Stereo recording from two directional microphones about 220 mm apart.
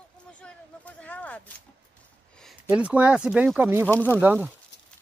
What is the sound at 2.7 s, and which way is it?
Speech, 5° right (ahead or behind).